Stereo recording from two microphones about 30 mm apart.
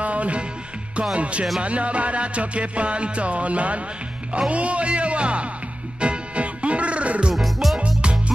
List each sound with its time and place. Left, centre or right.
0.0 s music: right
7.3 s music: centre